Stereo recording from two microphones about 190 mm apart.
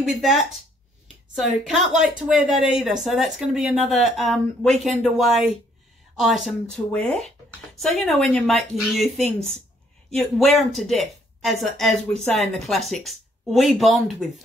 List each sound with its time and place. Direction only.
0.0 s speech: centre (ahead or behind)